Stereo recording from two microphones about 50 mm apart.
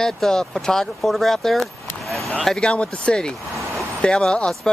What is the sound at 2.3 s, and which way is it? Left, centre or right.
Speech, centre.